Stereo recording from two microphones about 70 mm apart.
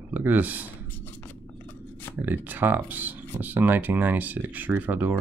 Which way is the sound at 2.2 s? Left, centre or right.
Right.